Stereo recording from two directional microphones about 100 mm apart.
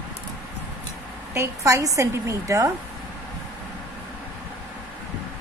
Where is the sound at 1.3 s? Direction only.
30° right (ahead or behind).